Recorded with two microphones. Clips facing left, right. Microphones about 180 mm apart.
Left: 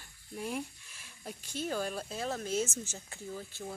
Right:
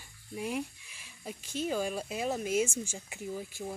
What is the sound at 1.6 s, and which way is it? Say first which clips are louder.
Speech: right 3 dB; 5° right (ahead or behind).